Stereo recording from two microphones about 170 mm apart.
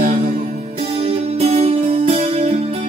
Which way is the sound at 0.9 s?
35° right (ahead or behind).